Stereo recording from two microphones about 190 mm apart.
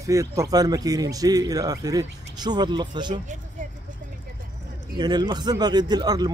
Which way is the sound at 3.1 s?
40° right (ahead or behind).